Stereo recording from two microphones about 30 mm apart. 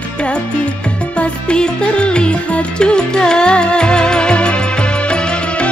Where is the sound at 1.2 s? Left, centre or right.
Left.